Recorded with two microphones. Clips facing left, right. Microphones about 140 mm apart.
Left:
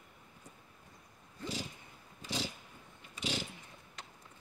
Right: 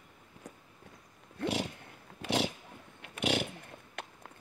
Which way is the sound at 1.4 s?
65° right (ahead or behind).